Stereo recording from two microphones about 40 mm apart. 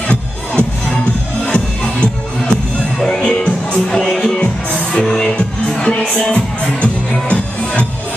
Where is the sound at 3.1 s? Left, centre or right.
Left.